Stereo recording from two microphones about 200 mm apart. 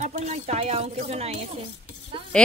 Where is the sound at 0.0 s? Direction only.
35° right (ahead or behind).